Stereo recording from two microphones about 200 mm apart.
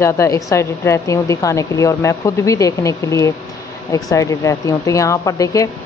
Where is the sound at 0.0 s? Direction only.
15° left (ahead or behind).